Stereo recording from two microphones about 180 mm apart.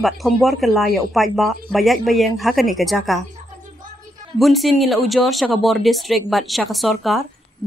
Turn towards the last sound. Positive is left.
turn(degrees=0)  # may be behind; listen again after turning